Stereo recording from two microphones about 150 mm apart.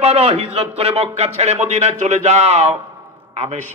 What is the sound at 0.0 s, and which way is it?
A man's voice, 45° right (ahead or behind).